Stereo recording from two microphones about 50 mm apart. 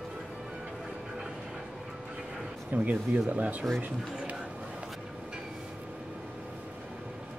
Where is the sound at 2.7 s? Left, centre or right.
Right.